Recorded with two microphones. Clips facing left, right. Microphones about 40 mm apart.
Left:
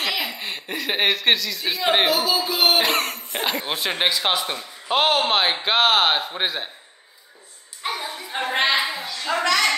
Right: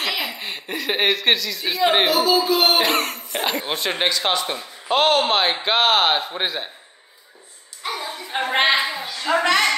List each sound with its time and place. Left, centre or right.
0.0 s speech: centre
7.8 s clapping: centre
8.3 s a woman's voice: right
8.6 s a sound: centre
9.0 s a child's voice: centre